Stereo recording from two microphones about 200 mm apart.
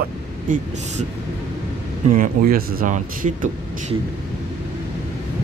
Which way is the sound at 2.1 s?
45° right (ahead or behind).